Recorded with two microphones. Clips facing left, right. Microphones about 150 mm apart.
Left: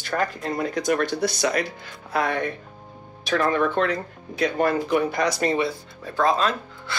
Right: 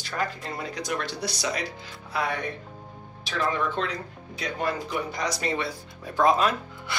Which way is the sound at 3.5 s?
60° left (ahead or behind).